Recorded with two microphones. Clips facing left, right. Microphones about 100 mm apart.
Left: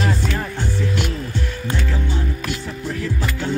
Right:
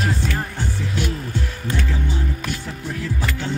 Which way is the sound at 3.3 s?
15° left (ahead or behind).